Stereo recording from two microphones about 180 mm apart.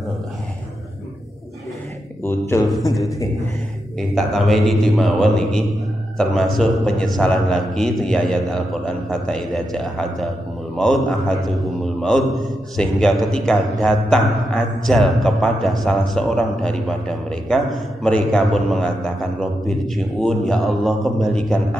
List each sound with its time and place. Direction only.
2.2 s speech: 15° left (ahead or behind)
4.1 s a man's voice: centre (ahead or behind)